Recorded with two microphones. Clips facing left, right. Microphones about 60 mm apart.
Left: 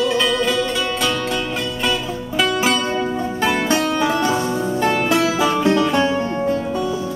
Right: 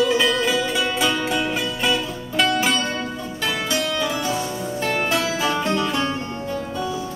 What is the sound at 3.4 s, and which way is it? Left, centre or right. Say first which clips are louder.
Music: left 5 dB; left.